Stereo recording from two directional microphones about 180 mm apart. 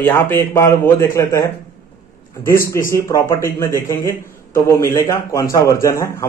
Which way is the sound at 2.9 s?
15° left (ahead or behind).